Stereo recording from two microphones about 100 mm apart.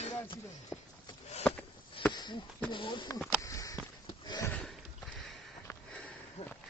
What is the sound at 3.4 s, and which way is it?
Sniff, 35° left (ahead or behind).